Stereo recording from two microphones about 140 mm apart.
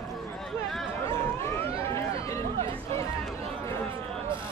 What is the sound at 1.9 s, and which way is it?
Run, 20° left (ahead or behind).